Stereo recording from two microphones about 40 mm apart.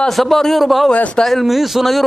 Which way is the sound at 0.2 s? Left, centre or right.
Centre.